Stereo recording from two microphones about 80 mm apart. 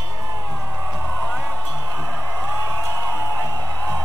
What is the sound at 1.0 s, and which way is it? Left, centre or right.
Music, centre.